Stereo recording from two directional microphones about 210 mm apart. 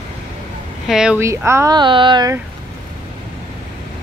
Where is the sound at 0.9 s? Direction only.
5° right (ahead or behind); by 2.3 s 20° right (ahead or behind).